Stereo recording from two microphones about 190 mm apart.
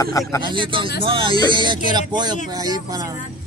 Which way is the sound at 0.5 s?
25° right (ahead or behind).